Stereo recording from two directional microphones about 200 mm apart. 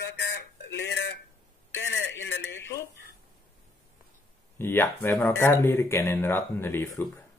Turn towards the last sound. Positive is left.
turn(degrees=10)  # may be behind; listen again after turning